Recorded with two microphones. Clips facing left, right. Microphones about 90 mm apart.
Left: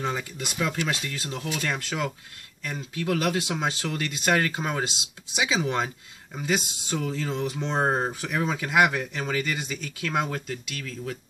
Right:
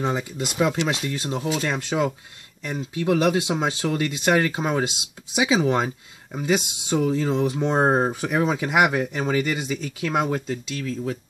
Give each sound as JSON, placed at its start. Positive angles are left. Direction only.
{"t": 0.0, "sound": "speech", "side_deg": -20}